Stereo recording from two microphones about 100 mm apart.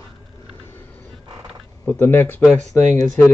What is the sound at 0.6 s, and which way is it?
Vehicle, 25° left (ahead or behind).